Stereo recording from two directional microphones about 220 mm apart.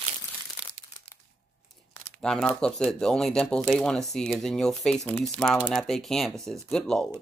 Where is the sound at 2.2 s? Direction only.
5° left (ahead or behind).